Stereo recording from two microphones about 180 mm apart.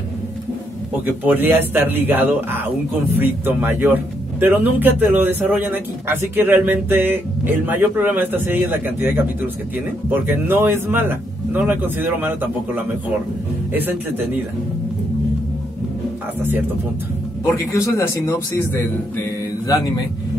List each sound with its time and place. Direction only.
1.0 s speech: 10° right (ahead or behind)
13.7 s speech: 10° right (ahead or behind)
17.7 s a man's voice: 15° left (ahead or behind)